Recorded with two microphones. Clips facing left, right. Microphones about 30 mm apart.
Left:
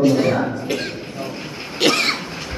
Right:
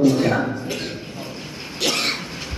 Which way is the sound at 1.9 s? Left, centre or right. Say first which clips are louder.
Left 4 dB; centre.